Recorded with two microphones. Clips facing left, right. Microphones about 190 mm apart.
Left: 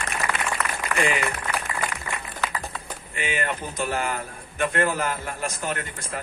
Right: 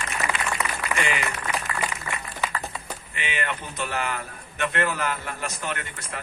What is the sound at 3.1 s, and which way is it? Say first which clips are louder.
A man's voice: left 3 dB; 45° left (ahead or behind).